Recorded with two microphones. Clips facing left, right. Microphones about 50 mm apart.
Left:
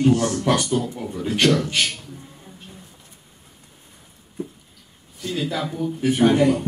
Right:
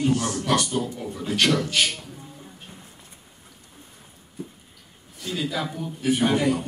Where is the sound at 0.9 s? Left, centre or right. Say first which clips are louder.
Left 2 dB; centre.